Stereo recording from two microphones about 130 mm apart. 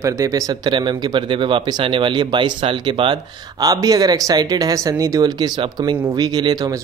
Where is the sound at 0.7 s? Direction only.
40° right (ahead or behind).